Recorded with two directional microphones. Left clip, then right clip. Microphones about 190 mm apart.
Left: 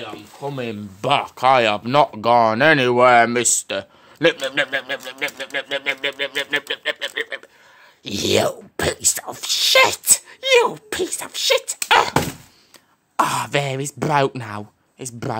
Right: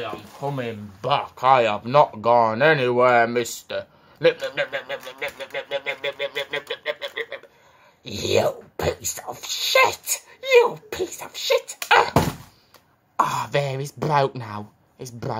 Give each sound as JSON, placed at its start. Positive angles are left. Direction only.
{"t": 0.4, "sound": "speech", "side_deg": 60}
{"t": 13.1, "sound": "speech", "side_deg": 50}